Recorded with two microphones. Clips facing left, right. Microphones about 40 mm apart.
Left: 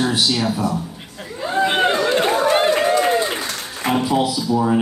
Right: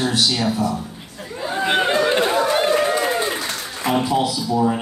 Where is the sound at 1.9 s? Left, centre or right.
Centre.